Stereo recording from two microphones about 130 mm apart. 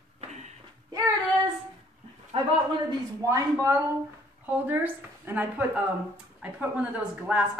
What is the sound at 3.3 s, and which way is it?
A woman's voice, 25° right (ahead or behind).